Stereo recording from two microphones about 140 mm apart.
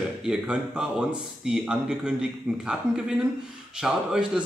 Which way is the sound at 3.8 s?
5° right (ahead or behind).